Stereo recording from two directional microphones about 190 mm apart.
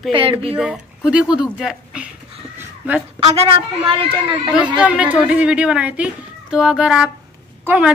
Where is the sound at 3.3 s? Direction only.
30° right (ahead or behind).